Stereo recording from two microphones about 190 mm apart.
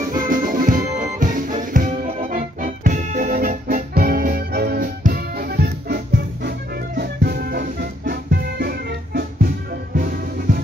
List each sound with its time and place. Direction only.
0.2 s music: 45° right (ahead or behind)
7.0 s music: 55° right (ahead or behind)